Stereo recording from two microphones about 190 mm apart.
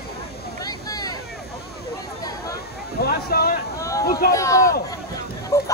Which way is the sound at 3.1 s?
55° left (ahead or behind).